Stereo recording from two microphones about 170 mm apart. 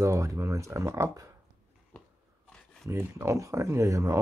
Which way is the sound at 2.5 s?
5° left (ahead or behind).